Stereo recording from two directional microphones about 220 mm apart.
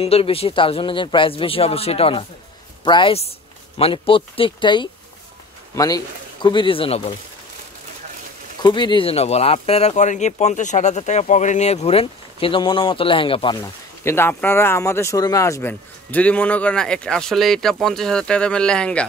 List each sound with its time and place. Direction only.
0.0 s speech: 25° left (ahead or behind)
8.6 s speech: 20° left (ahead or behind); by 19.0 s 5° left (ahead or behind)